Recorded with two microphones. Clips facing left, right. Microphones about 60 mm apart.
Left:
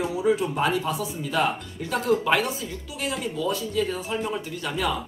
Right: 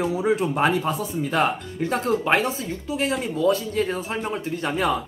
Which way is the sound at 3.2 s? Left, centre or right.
Right.